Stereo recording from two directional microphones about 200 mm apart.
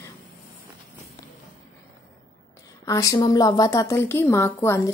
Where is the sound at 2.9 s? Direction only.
15° left (ahead or behind).